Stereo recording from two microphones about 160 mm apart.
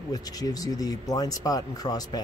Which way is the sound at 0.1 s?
25° left (ahead or behind).